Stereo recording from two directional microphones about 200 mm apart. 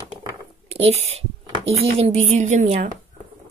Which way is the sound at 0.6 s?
30° right (ahead or behind).